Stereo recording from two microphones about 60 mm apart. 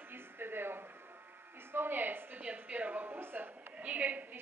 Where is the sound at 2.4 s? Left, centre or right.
Right.